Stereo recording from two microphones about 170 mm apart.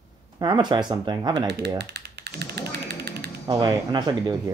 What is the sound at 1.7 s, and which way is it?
Typewriter, 75° right (ahead or behind).